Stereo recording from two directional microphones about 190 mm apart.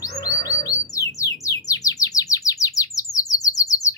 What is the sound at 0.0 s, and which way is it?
Chirp, 20° left (ahead or behind).